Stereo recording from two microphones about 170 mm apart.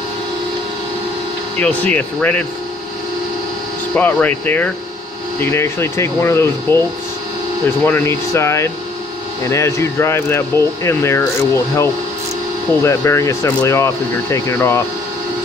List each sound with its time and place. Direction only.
1.6 s speech: 10° left (ahead or behind)
3.9 s speech: 10° left (ahead or behind)
7.8 s speech: 15° left (ahead or behind)